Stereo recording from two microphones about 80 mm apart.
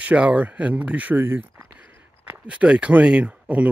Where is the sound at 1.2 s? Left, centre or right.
Right.